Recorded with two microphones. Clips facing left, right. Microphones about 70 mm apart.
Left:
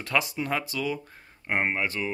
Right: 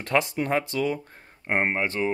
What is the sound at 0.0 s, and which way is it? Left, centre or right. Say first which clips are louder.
Speech: right 3 dB; right.